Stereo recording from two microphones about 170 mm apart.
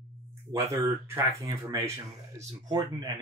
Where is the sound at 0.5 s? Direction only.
20° right (ahead or behind).